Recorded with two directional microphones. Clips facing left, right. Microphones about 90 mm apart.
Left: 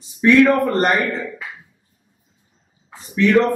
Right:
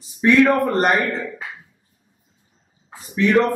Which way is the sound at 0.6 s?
Centre (ahead or behind).